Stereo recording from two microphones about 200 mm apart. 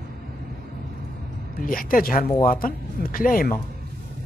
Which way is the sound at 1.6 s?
45° left (ahead or behind).